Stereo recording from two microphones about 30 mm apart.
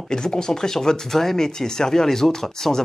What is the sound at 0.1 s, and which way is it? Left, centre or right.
Speech, left.